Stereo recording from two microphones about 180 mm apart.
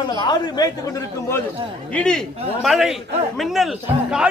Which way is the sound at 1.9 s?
5° left (ahead or behind).